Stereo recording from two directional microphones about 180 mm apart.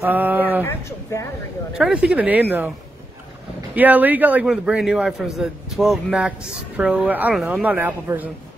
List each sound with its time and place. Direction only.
0.0 s speech: 10° right (ahead or behind)
0.7 s a sound: 15° left (ahead or behind)
1.7 s a man's voice: 5° right (ahead or behind)
3.7 s a man's voice: 10° right (ahead or behind)